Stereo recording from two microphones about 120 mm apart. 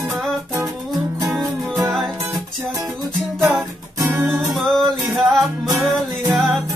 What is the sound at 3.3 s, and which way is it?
Music, centre (ahead or behind).